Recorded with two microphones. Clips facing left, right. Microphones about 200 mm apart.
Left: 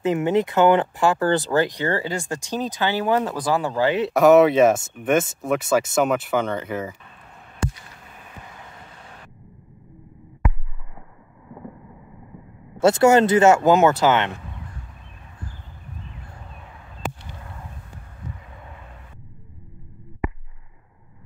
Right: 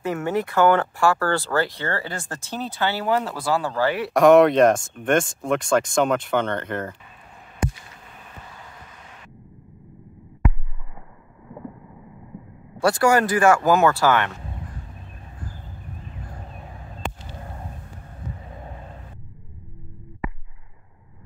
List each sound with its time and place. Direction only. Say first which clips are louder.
0.0 s speech: left 4 dB; 20° left (ahead or behind)
4.1 s speech: right 1 dB; 5° left (ahead or behind)
12.7 s speech: left 4 dB; 25° left (ahead or behind)
16.6 s a sound: left 2 dB; 35° right (ahead or behind)
18.4 s vehicle: right 4 dB; 35° right (ahead or behind)